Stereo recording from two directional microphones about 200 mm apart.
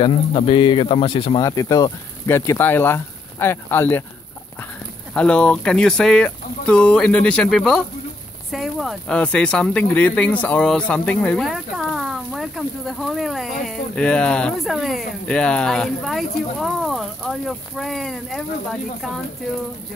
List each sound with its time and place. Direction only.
0.0 s speech: 25° left (ahead or behind); by 4.0 s 10° left (ahead or behind)
5.1 s speech: 5° left (ahead or behind)